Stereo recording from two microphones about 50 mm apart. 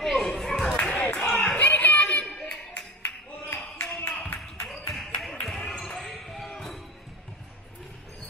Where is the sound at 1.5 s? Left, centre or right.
Left.